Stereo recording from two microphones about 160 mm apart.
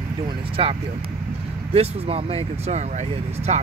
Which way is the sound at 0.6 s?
35° right (ahead or behind).